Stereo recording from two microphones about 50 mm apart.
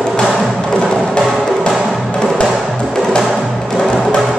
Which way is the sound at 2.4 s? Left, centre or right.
Centre.